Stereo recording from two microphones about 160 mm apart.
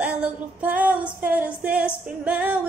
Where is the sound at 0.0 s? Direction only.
5° right (ahead or behind).